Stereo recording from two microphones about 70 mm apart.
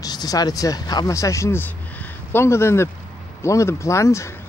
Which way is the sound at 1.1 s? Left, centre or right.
Left.